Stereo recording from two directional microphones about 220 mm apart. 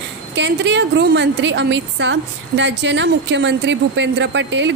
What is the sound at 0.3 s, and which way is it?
A woman's voice, 55° right (ahead or behind).